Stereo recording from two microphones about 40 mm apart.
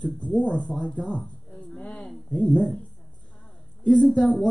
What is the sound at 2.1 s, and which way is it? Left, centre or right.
Speech, centre.